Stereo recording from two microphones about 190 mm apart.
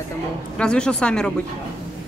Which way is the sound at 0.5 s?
5° left (ahead or behind).